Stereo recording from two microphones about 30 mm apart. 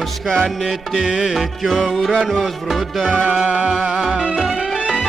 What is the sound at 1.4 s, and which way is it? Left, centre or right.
Music, centre.